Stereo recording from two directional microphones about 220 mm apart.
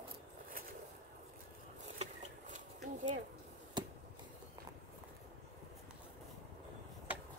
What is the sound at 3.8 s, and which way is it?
Chop, 20° right (ahead or behind).